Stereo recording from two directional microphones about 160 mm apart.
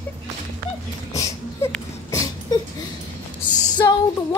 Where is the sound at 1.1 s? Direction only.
20° left (ahead or behind).